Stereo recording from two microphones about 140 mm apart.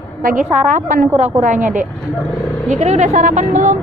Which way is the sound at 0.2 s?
80° right.